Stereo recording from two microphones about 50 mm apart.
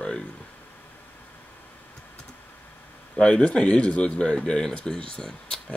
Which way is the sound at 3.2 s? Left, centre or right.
Left.